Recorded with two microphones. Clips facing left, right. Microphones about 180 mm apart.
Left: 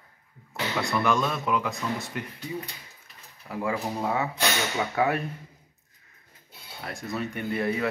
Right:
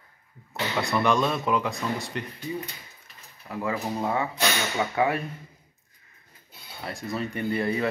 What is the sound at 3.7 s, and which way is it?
Speech, 10° left (ahead or behind).